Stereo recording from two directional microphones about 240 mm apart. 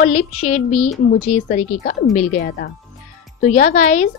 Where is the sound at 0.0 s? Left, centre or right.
Left.